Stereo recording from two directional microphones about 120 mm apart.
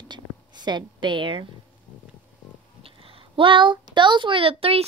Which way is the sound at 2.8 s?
50° right (ahead or behind).